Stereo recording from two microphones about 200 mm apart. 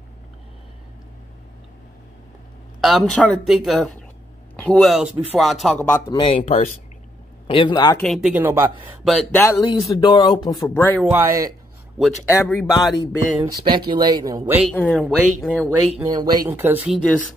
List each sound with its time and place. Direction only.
2.8 s speech: centre (ahead or behind)
6.0 s speech: 25° left (ahead or behind)
8.0 s speech: centre (ahead or behind)
9.4 s speech: 20° left (ahead or behind)
11.1 s speech: 10° right (ahead or behind)
12.5 s speech: 20° left (ahead or behind)
13.0 s speech: 20° right (ahead or behind)
14.7 s speech: 5° left (ahead or behind)
16.0 s speech: 20° right (ahead or behind); by 17.2 s centre (ahead or behind)